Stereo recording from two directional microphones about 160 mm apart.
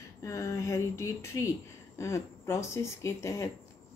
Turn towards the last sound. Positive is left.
turn(degrees=20)  # may be behind; listen again after turning